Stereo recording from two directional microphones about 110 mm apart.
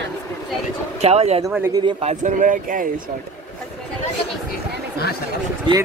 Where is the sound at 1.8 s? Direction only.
50° right (ahead or behind).